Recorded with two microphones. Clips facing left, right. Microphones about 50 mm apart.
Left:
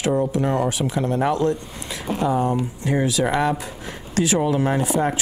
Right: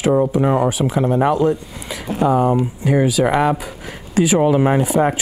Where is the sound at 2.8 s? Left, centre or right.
Centre.